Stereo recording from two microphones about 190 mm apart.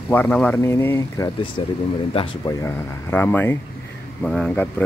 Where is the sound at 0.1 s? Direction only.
10° left (ahead or behind).